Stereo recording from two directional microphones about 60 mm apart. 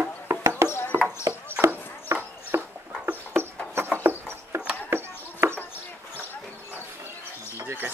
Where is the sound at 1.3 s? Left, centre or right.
Right.